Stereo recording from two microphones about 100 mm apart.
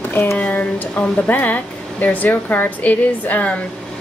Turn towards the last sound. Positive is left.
turn(degrees=15)  # may be behind; listen again after turning